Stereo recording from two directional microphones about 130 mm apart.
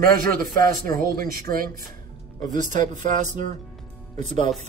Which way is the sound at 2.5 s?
75° right (ahead or behind).